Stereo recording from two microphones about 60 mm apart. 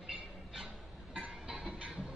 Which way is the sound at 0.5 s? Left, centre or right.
Centre.